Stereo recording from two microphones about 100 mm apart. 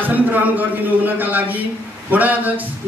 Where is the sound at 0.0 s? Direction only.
15° right (ahead or behind).